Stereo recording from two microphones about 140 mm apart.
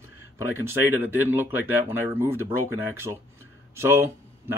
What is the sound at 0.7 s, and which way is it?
Speech, 15° right (ahead or behind).